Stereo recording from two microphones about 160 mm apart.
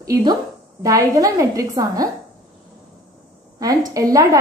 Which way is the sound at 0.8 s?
20° right (ahead or behind).